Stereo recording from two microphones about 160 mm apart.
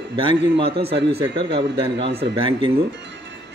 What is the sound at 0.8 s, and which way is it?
Speech, 90° right.